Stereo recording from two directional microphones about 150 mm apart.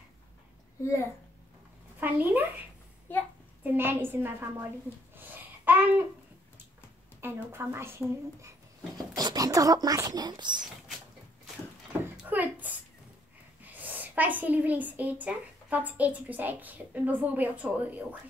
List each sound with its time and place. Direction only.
2.0 s a woman's voice: 10° right (ahead or behind)
3.1 s a child's voice: 15° left (ahead or behind)
3.6 s a woman's voice: 15° right (ahead or behind)
5.1 s a sound: 15° right (ahead or behind)
7.2 s speech: 15° right (ahead or behind)
12.3 s a sound: 10° right (ahead or behind)
13.7 s a woman's voice: 10° right (ahead or behind)